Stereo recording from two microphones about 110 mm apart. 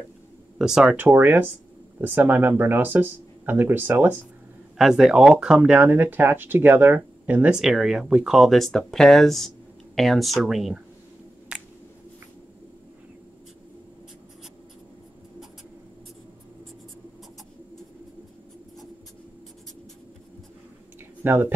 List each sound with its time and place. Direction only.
0.6 s speech: 5° right (ahead or behind)
0.9 s speech: 15° right (ahead or behind)
4.7 s speech: 5° right (ahead or behind)
7.6 s speech: 5° right (ahead or behind)
11.5 s a sound: 5° right (ahead or behind)
21.2 s a sound: 20° right (ahead or behind)